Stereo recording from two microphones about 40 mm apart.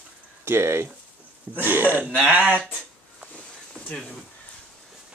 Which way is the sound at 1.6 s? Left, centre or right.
Right.